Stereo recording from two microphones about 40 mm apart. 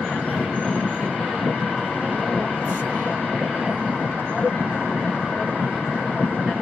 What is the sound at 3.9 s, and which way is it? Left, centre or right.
Vehicle, left.